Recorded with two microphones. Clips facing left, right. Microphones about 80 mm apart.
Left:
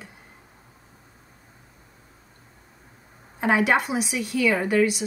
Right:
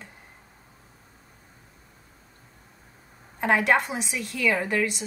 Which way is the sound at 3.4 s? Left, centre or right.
Centre.